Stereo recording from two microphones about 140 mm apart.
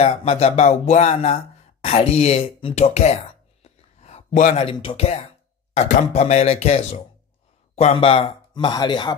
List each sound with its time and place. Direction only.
0.0 s speech: 50° left (ahead or behind)
3.6 s a sound: 50° left (ahead or behind)
5.8 s speech: 60° left (ahead or behind); by 9.1 s 30° left (ahead or behind)